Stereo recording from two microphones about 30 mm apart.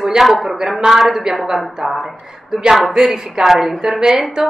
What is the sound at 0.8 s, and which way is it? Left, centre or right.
A woman's voice, right.